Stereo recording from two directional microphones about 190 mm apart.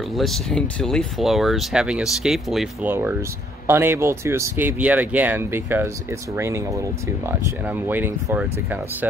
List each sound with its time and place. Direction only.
0.1 s speech: centre (ahead or behind)